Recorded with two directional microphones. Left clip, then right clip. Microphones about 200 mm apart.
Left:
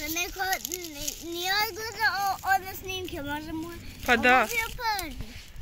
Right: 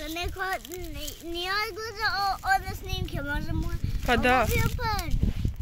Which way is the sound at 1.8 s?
15° right (ahead or behind).